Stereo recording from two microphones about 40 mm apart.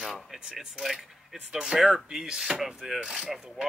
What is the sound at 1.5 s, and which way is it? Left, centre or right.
Speech, right.